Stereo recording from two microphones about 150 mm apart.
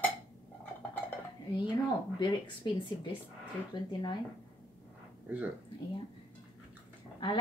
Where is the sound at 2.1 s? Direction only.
30° left (ahead or behind).